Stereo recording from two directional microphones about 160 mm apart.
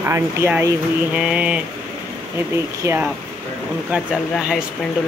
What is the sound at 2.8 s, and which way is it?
Speech, 20° right (ahead or behind).